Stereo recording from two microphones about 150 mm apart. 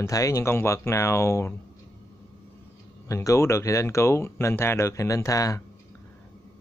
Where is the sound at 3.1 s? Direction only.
20° left (ahead or behind).